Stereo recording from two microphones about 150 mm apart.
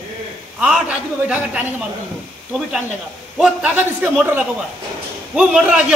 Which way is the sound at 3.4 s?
10° right (ahead or behind).